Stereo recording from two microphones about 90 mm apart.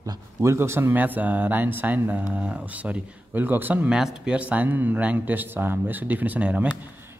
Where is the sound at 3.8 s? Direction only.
5° right (ahead or behind).